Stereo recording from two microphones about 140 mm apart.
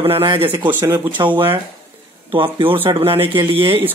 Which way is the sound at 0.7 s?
15° right (ahead or behind).